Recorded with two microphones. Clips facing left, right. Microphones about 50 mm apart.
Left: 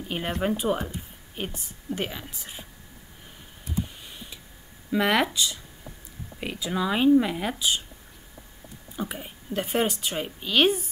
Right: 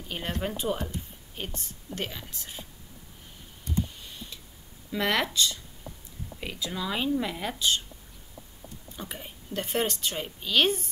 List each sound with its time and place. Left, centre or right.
0.1 s speech: centre
3.6 s clicking: centre
4.9 s speech: centre
8.9 s speech: centre